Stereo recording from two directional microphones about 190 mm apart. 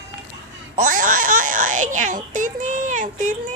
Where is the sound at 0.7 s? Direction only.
45° right (ahead or behind).